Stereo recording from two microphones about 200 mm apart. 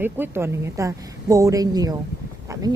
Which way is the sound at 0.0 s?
10° right (ahead or behind).